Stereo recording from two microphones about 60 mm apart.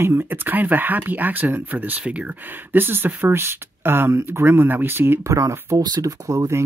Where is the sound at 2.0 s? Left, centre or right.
Centre.